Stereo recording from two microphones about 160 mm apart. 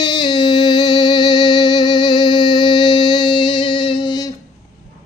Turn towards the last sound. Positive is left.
turn(degrees=30)  # may be behind; listen again after turning